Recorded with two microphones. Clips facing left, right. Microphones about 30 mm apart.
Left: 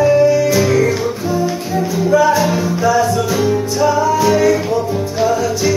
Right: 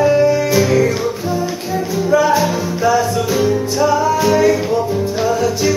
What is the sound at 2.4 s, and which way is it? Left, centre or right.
Music, centre.